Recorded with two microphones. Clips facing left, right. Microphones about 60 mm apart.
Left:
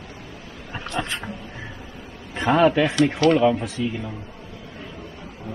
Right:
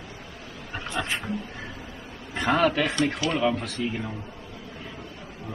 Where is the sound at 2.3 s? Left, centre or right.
Left.